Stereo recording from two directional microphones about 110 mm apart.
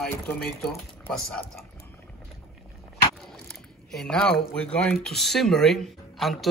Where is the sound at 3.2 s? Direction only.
5° left (ahead or behind).